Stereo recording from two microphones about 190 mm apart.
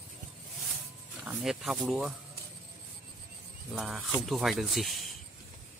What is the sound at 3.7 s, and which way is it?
Speech, centre (ahead or behind).